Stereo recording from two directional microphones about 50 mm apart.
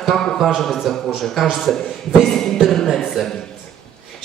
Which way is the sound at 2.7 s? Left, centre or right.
Centre.